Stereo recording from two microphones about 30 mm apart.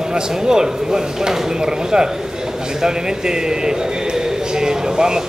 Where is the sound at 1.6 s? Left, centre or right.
Right.